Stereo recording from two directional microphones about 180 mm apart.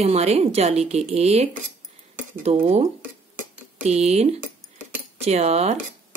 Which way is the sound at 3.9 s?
35° right (ahead or behind).